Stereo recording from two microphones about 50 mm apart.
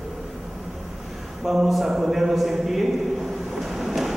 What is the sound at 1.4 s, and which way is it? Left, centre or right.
A man's voice, centre.